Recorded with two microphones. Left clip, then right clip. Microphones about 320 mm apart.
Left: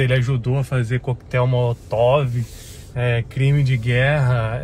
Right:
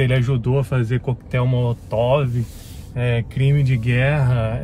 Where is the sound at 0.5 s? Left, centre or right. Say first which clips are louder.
Right 4 dB; centre.